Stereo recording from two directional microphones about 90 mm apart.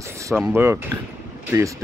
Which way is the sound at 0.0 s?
35° right (ahead or behind).